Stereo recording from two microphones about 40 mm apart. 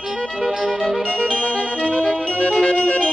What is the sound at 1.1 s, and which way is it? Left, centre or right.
Music, left.